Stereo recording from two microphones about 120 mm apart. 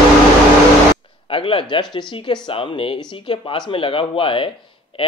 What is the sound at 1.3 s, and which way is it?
Speech, 50° left (ahead or behind).